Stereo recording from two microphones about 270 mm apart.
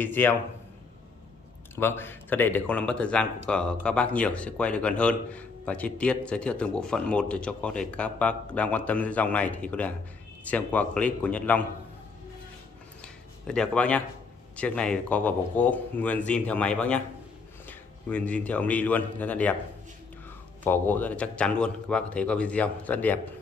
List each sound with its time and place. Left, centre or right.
0.0 s a man's voice: centre
1.8 s speech: centre
13.0 s a sound: centre
14.6 s speech: centre
20.6 s speech: centre